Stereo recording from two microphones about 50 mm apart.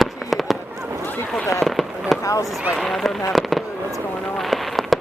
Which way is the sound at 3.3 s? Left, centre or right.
Centre.